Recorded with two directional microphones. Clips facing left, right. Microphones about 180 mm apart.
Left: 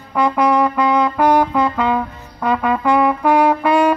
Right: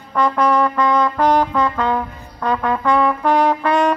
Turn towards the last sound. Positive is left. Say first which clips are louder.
# left 2 dB
turn(degrees=10)  # may be behind; listen again after turning